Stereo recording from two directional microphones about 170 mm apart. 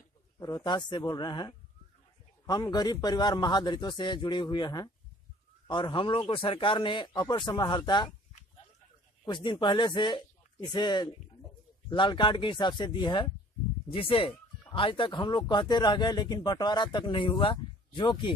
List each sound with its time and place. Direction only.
0.4 s speech: 25° left (ahead or behind)
9.2 s speech: 25° left (ahead or behind)